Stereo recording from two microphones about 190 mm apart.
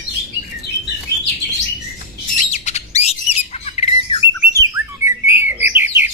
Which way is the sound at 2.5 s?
35° left (ahead or behind).